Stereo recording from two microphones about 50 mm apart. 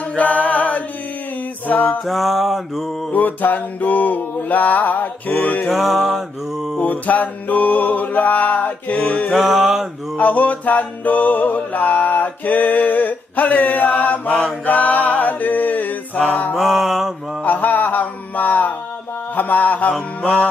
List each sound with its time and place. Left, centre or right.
0.1 s mantra: left
1.7 s music: left
2.0 s music: centre
3.1 s music: left
5.7 s music: centre
6.8 s music: left
9.3 s music: centre
10.1 s music: left
16.5 s music: centre
17.4 s music: left